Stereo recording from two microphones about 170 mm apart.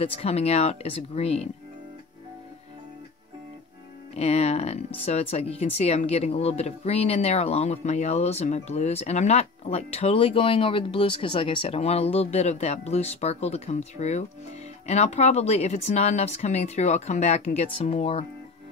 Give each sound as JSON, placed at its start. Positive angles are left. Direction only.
{"t": 0.0, "sound": "speech", "side_deg": 35}
{"t": 4.2, "sound": "speech", "side_deg": 40}